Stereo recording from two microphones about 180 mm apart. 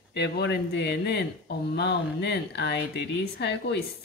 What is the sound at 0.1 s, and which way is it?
Speech, 70° left (ahead or behind).